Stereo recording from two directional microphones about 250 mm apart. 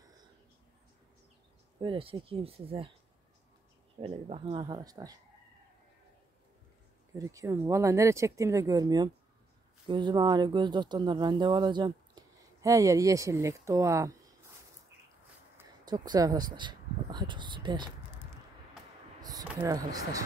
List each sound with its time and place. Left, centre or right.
1.8 s speech: right
4.0 s speech: right
7.2 s speech: centre
15.5 s a sound: centre
19.2 s speech: centre